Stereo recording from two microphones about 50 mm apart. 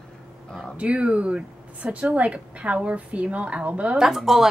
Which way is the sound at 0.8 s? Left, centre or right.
Right.